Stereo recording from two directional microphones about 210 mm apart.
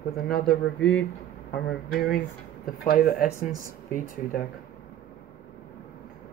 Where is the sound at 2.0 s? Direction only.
45° left (ahead or behind).